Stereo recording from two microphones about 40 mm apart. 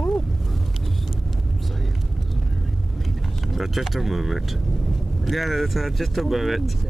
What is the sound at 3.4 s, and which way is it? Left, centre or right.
Speech, centre.